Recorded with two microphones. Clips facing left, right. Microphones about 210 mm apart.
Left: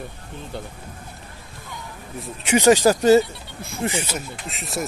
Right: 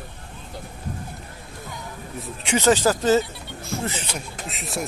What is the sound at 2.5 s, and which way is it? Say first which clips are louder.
Speech: left 4 dB; 15° left (ahead or behind).